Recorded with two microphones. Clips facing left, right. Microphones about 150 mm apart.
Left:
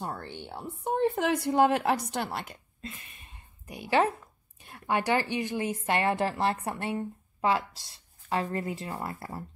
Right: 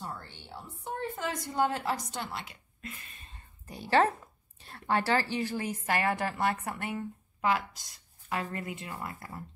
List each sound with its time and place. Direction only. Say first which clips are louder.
0.0 s a woman's voice: left 5 dB; 60° left (ahead or behind)
2.8 s a sound: left 1 dB; 20° left (ahead or behind)
4.6 s a woman's voice: left 1 dB; 15° left (ahead or behind); by 9.4 s 35° left (ahead or behind)